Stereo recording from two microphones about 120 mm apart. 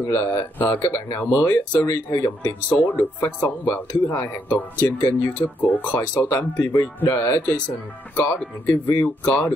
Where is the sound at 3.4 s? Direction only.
15° left (ahead or behind).